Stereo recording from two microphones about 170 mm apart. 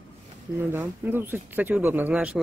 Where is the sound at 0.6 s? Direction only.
15° right (ahead or behind).